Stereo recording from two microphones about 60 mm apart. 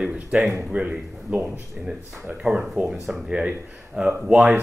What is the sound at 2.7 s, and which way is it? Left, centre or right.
Speech, centre.